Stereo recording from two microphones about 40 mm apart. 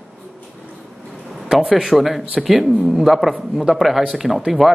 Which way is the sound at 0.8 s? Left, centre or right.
Centre.